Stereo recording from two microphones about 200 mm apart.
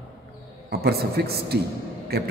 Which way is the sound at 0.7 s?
50° right (ahead or behind).